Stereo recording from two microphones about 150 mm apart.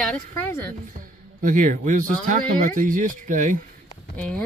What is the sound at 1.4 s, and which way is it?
Speech, 60° right (ahead or behind).